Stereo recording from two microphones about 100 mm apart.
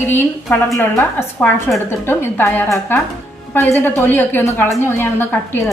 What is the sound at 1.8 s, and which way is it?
A woman's voice, 20° left (ahead or behind).